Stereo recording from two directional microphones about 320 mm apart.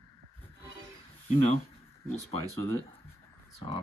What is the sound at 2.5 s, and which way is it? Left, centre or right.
Speech, centre.